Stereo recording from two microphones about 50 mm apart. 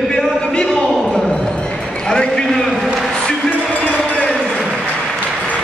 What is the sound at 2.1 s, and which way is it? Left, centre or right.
Speech, centre.